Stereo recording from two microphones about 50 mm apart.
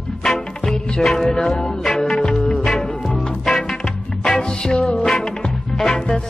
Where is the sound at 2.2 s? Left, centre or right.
Centre.